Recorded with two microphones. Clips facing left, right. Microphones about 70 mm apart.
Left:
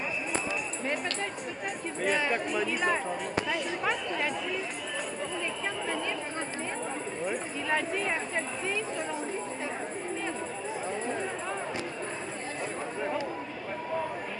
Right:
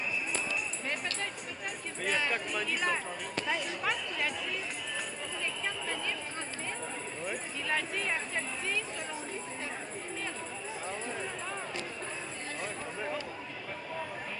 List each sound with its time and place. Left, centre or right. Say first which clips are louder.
2.0 s speech: left 4 dB; centre
7.7 s speech: left 4 dB; centre